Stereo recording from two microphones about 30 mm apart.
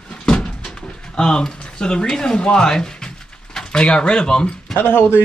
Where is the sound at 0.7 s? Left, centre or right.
Left.